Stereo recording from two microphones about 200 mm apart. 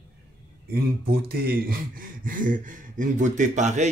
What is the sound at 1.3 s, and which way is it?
Speech, 45° right (ahead or behind).